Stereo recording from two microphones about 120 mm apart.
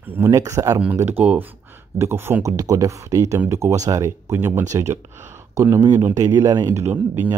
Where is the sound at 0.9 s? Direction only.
15° right (ahead or behind).